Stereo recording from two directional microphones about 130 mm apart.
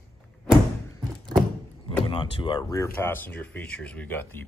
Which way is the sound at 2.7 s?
20° left (ahead or behind).